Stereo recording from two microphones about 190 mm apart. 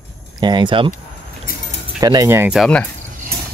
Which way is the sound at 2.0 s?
20° right (ahead or behind).